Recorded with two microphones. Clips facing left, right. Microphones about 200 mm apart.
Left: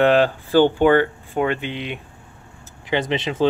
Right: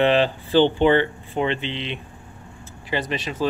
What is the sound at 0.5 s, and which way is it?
Speech, 10° left (ahead or behind).